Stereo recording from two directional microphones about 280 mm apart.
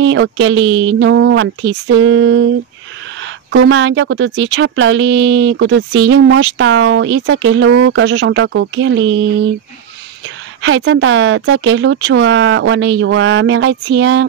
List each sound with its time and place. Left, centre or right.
0.0 s a woman's voice: right
10.2 s a woman's voice: right